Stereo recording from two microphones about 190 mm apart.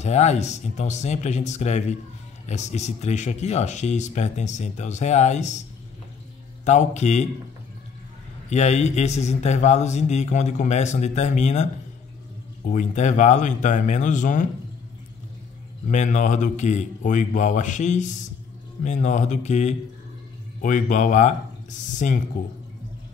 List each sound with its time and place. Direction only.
0.0 s a man's voice: 35° left (ahead or behind)
6.6 s a man's voice: 40° left (ahead or behind)
8.5 s a man's voice: 35° left (ahead or behind)
15.9 s a man's voice: 40° left (ahead or behind)